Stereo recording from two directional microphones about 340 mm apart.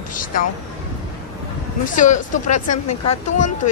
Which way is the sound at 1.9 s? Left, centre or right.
Left.